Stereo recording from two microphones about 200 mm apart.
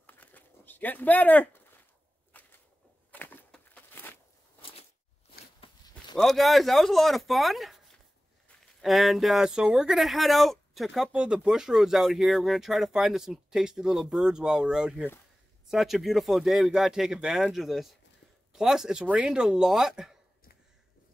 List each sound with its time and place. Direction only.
0.0 s a sound: 10° left (ahead or behind)
5.6 s walk: 25° left (ahead or behind)
6.1 s speech: centre (ahead or behind)